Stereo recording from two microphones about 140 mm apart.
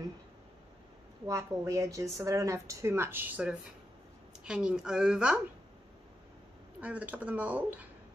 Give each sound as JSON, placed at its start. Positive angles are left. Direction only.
{"t": 1.2, "sound": "speech", "side_deg": -20}
{"t": 6.8, "sound": "speech", "side_deg": -10}